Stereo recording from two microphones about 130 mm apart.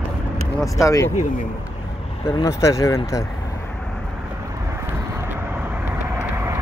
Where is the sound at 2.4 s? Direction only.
20° left (ahead or behind).